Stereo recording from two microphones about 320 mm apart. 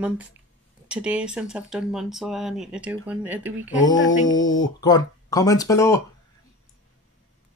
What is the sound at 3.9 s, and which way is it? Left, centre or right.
Mantra, left.